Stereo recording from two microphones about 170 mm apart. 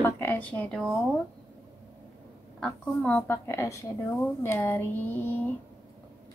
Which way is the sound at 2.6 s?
5° left (ahead or behind).